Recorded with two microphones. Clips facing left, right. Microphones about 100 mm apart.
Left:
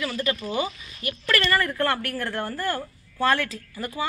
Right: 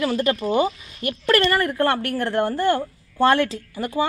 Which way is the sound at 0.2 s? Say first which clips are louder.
Right 5 dB; 50° right (ahead or behind).